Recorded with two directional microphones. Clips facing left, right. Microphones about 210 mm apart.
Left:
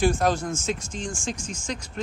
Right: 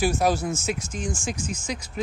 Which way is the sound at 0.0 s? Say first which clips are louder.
Even; 5° right (ahead or behind).